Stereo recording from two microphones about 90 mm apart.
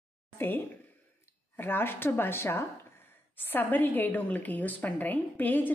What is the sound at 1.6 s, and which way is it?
Speech, 25° left (ahead or behind).